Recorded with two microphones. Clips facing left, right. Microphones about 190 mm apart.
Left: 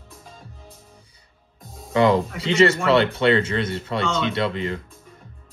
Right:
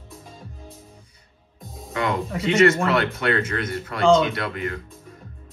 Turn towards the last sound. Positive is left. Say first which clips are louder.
# left 4 dB
turn(degrees=25)  # may be behind; listen again after turning